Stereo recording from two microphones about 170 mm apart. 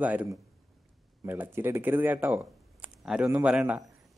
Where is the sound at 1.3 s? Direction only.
10° right (ahead or behind).